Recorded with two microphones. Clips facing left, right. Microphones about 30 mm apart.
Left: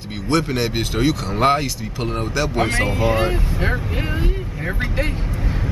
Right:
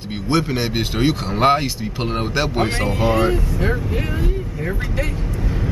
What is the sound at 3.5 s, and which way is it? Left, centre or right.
Speech, centre.